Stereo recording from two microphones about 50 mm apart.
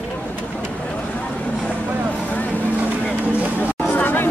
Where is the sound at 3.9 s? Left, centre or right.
Left.